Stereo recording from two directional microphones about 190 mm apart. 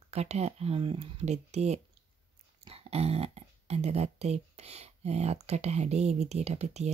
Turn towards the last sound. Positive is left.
turn(degrees=-35)  # may be behind; listen again after turning